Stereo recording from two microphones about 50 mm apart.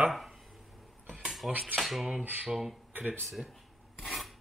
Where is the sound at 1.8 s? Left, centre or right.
Centre.